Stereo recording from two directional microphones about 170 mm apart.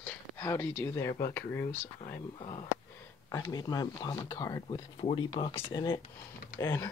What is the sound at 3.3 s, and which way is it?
Speech, 20° left (ahead or behind).